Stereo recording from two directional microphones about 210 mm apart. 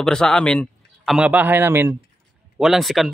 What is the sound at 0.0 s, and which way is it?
A man's voice, 5° left (ahead or behind).